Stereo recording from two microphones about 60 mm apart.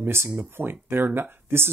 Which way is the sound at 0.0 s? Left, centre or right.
Right.